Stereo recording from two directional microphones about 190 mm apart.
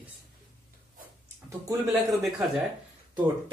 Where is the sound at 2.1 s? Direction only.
Centre (ahead or behind).